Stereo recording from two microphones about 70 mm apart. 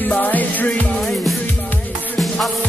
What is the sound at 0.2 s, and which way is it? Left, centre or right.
Music, left.